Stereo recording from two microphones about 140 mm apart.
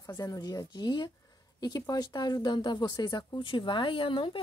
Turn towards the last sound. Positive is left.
turn(degrees=35)  # may be behind; listen again after turning